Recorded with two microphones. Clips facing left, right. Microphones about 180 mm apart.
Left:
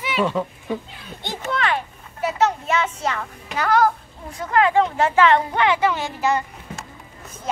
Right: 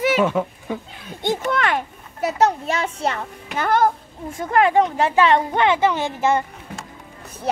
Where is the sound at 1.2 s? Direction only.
50° right (ahead or behind); by 6.4 s 20° right (ahead or behind).